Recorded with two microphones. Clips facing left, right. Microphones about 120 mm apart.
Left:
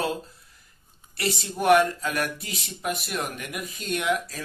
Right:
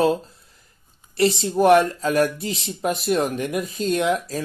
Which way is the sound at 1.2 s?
30° right (ahead or behind).